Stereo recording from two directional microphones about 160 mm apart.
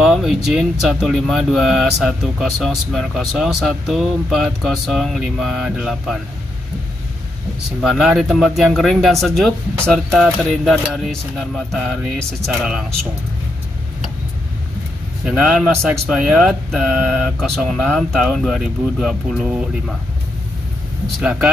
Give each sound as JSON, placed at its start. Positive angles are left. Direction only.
{"t": 0.0, "sound": "speech", "side_deg": 0}
{"t": 7.9, "sound": "speech", "side_deg": 0}
{"t": 15.2, "sound": "speech", "side_deg": -5}
{"t": 21.2, "sound": "speech", "side_deg": -5}